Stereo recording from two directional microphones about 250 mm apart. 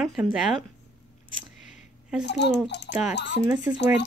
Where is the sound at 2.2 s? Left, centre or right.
Left.